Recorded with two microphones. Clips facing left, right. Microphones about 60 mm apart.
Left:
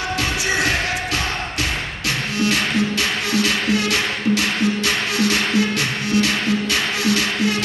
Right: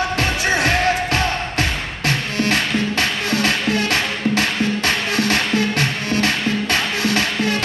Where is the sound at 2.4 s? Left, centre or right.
Right.